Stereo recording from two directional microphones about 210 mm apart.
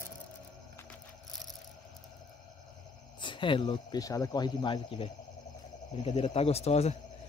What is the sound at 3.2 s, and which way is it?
Speech, 25° left (ahead or behind).